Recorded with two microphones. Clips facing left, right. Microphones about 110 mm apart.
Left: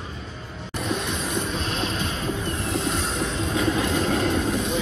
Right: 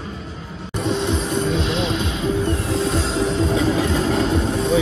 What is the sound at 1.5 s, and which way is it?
Music, 40° left (ahead or behind).